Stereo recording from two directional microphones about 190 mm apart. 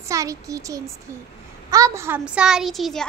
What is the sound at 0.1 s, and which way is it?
A child's voice, 15° right (ahead or behind).